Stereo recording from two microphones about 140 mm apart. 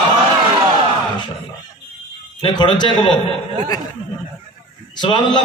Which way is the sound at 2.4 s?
35° left (ahead or behind).